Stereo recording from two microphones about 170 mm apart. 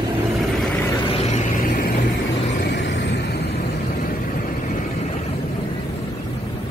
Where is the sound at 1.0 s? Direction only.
35° left (ahead or behind).